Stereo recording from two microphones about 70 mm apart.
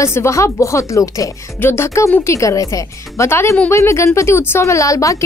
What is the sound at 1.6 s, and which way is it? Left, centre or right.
Speech, left.